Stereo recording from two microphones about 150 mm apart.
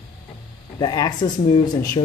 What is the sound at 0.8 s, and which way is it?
A man's voice, 25° left (ahead or behind).